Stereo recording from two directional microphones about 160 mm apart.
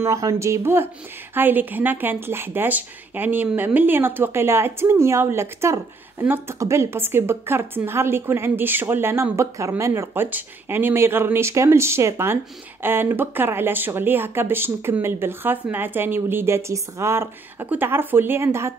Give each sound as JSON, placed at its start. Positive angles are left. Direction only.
{"t": 0.0, "sound": "a woman's voice", "side_deg": -20}